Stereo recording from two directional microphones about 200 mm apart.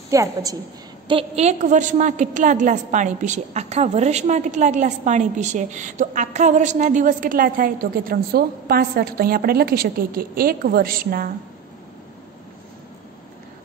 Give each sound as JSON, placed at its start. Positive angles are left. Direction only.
{"t": 0.1, "sound": "a woman's voice", "side_deg": -15}
{"t": 1.0, "sound": "a woman's voice", "side_deg": -30}